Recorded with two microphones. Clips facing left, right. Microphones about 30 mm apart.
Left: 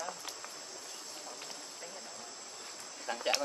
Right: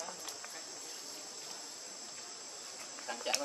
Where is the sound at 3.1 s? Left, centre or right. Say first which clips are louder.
Left 4 dB; left.